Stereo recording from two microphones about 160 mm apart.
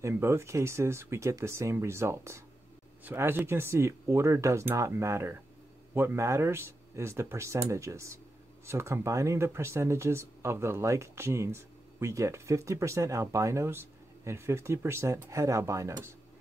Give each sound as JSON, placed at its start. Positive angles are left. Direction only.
{"t": 0.0, "sound": "speech", "side_deg": -15}